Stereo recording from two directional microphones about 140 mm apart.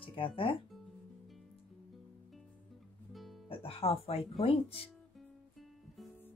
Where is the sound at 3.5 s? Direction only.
40° left (ahead or behind).